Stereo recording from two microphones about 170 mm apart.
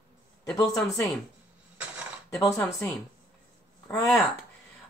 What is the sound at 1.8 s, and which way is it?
Mechanisms, 10° right (ahead or behind).